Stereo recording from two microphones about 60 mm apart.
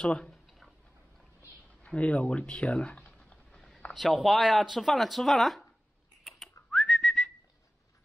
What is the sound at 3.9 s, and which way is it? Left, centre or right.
Speech, centre.